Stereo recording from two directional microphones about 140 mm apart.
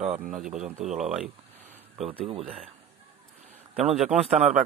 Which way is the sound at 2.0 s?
40° right (ahead or behind).